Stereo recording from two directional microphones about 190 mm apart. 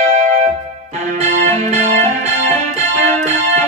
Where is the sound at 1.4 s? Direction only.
35° right (ahead or behind).